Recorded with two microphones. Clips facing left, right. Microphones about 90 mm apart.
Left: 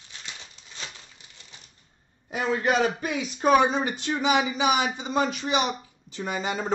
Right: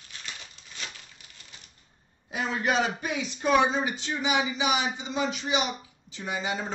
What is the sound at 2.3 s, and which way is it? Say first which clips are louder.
A man's voice: left 3 dB; 40° left (ahead or behind).